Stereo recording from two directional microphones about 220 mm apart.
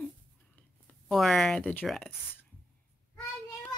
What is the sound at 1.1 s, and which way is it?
Speech, centre (ahead or behind).